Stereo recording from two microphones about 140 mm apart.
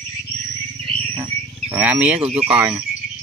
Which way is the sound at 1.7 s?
10° right (ahead or behind).